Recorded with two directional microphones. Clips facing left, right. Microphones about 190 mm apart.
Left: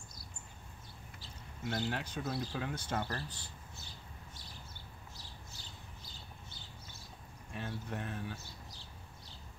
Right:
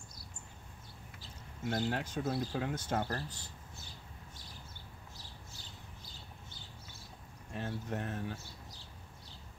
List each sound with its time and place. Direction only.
1.7 s speech: 45° right (ahead or behind)
7.5 s speech: 40° right (ahead or behind)